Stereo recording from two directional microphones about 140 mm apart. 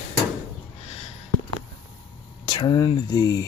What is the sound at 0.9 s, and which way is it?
Sniff, 50° left (ahead or behind).